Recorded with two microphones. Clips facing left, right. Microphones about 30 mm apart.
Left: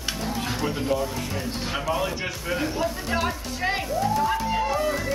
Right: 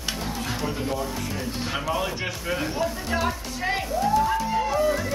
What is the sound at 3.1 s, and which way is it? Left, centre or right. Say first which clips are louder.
Speech: even; centre.